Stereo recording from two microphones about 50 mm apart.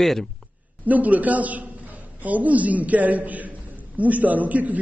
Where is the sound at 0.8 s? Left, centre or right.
Right.